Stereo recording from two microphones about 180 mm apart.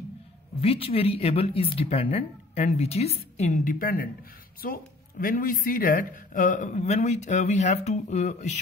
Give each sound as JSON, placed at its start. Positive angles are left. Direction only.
{"t": 0.6, "sound": "a woman's voice", "side_deg": 30}